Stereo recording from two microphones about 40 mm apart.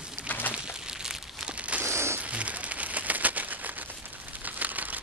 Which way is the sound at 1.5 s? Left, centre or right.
Right.